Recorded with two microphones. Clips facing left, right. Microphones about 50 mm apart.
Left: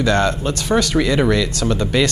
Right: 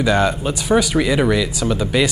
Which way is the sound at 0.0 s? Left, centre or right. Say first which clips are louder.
Even; centre.